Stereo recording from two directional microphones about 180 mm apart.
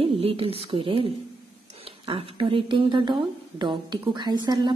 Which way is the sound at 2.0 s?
30° right (ahead or behind).